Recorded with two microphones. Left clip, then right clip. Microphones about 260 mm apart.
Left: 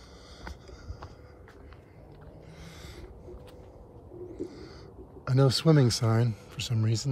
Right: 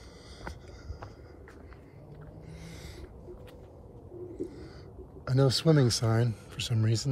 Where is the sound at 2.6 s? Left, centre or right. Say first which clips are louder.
Left 1 dB; left.